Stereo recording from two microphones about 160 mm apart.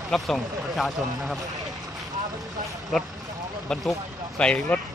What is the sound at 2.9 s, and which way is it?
Speech, centre (ahead or behind).